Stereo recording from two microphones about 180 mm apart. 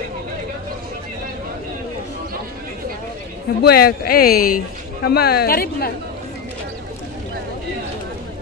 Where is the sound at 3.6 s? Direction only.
60° left (ahead or behind).